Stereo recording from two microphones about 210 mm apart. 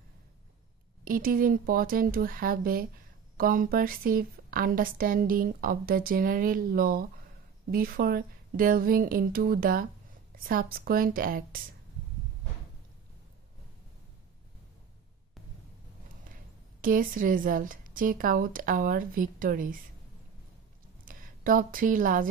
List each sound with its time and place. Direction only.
1.0 s a woman's voice: 40° right (ahead or behind)
16.8 s speech: 40° right (ahead or behind)
21.0 s speech: 40° right (ahead or behind)